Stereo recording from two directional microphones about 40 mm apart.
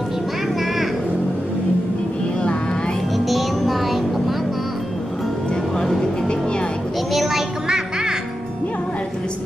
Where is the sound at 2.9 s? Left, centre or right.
Centre.